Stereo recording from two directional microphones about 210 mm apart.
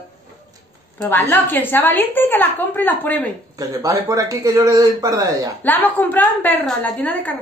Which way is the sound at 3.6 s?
15° right (ahead or behind).